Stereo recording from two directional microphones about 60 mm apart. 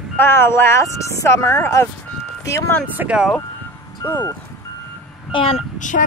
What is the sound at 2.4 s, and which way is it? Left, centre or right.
Speech, left.